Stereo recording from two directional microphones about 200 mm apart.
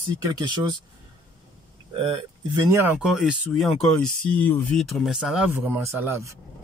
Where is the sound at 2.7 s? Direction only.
10° right (ahead or behind).